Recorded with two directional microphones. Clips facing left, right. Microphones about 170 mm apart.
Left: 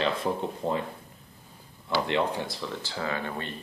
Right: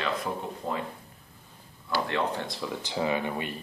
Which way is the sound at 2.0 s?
20° left (ahead or behind).